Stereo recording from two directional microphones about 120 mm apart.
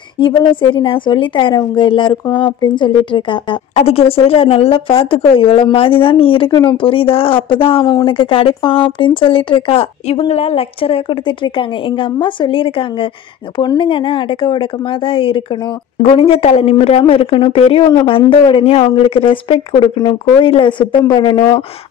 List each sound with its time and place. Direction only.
0.2 s a woman's voice: 40° left (ahead or behind)
3.7 s a woman's voice: 55° left (ahead or behind)